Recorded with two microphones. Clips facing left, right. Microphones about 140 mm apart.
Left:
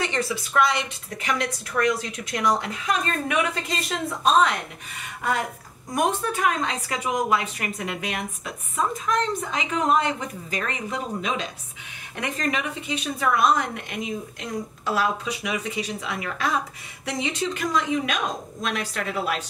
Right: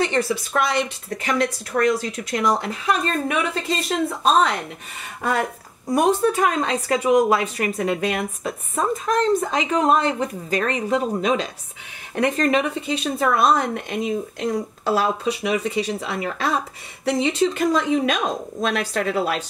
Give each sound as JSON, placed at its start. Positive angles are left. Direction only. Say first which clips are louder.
{"t": 0.0, "sound": "a woman's voice", "louder": "right 5 dB", "side_deg": -35}
{"t": 5.9, "sound": "a woman's voice", "louder": "right 6 dB", "side_deg": -35}